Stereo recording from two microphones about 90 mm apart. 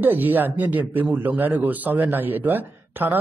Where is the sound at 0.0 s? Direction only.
20° right (ahead or behind).